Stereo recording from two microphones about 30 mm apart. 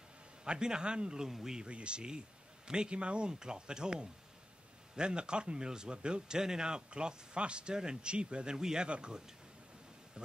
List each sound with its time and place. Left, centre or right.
0.5 s a man's voice: right
1.3 s speech: centre
1.7 s a man's voice: right
6.9 s speech: right
8.5 s a man's voice: centre
8.8 s speech: right